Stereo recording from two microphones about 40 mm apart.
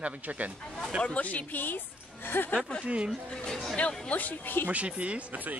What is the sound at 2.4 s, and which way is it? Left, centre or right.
Speech, left.